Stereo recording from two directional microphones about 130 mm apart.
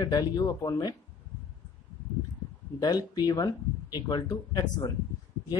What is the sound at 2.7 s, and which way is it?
Speech, 30° left (ahead or behind).